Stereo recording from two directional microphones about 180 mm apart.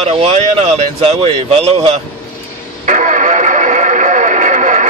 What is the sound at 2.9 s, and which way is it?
Radio, 45° right (ahead or behind).